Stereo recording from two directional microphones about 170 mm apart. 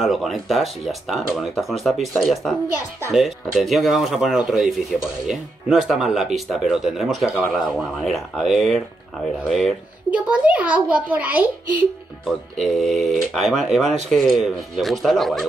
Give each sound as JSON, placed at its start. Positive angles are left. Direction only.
{"t": 0.0, "sound": "a child's voice", "side_deg": 0}